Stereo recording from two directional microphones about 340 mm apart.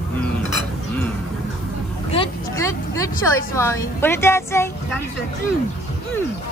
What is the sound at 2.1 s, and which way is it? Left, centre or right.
Vehicle, centre.